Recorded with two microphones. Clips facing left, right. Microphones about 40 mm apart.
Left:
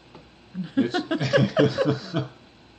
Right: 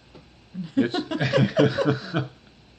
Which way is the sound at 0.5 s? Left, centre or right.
Left.